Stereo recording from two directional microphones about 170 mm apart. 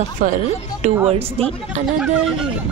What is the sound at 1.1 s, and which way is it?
Speech, 35° right (ahead or behind).